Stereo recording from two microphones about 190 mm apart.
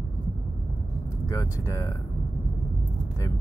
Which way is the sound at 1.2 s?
15° left (ahead or behind).